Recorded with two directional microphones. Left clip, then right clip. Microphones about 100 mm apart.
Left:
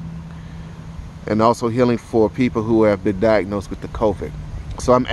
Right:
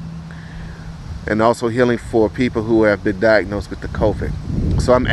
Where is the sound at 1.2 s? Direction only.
35° left (ahead or behind); by 5.0 s 60° left (ahead or behind).